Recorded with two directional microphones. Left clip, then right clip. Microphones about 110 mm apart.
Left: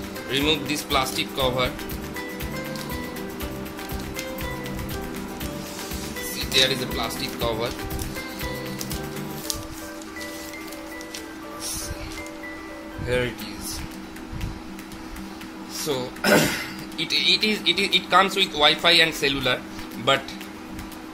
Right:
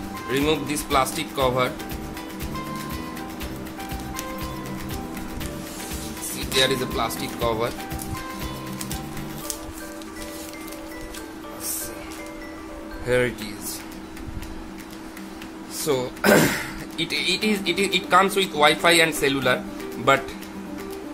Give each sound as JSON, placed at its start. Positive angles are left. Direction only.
{"t": 0.5, "sound": "a man's voice", "side_deg": -20}
{"t": 6.5, "sound": "a man's voice", "side_deg": -30}
{"t": 13.1, "sound": "a man's voice", "side_deg": -25}
{"t": 15.9, "sound": "speech", "side_deg": -35}
{"t": 16.9, "sound": "a man's voice", "side_deg": -15}